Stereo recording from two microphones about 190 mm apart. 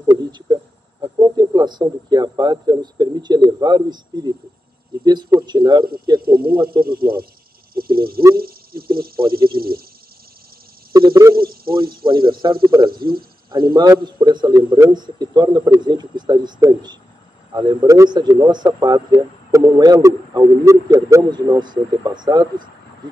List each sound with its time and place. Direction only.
0.1 s a sound: 20° right (ahead or behind)
1.0 s a man's voice: 20° right (ahead or behind)
6.2 s speech: 50° right (ahead or behind)
6.5 s a man's voice: 25° right (ahead or behind)
6.8 s speech: 50° right (ahead or behind)
8.4 s a sound: 50° right (ahead or behind)
10.9 s speech: 20° right (ahead or behind)
11.3 s a sound: 50° right (ahead or behind)
12.0 s a man's voice: 25° right (ahead or behind)
12.9 s speech: 50° right (ahead or behind)
13.5 s a man's voice: 20° right (ahead or behind)